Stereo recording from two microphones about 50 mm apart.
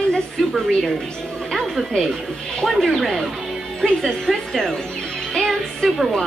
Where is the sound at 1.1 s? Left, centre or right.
Centre.